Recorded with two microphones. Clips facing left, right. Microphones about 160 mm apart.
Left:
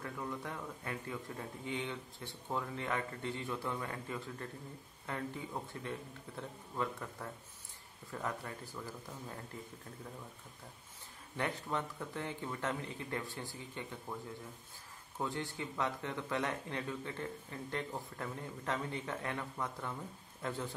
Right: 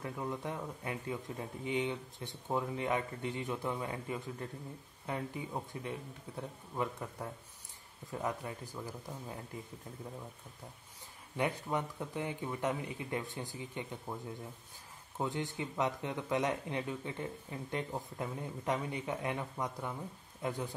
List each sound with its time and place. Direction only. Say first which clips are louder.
0.0 s a man's voice: right 3 dB; 20° right (ahead or behind)
11.3 s a man's voice: right 3 dB; 15° right (ahead or behind)
15.1 s a man's voice: right 3 dB; 20° right (ahead or behind)